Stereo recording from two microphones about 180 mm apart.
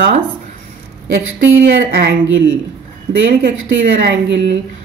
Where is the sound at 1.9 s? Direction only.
70° right (ahead or behind); by 2.5 s 90° right.